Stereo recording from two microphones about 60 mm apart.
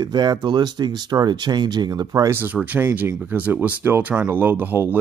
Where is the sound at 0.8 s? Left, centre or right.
Right.